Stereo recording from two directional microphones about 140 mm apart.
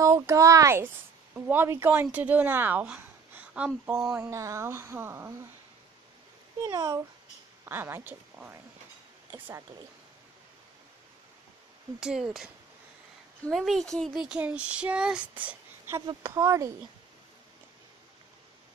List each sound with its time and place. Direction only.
0.0 s speech: 20° right (ahead or behind); by 4.3 s 5° right (ahead or behind)
4.3 s speech: 20° right (ahead or behind)
6.6 s speech: 25° right (ahead or behind)
12.0 s speech: 5° right (ahead or behind)
13.5 s speech: centre (ahead or behind)
16.1 s speech: 25° right (ahead or behind)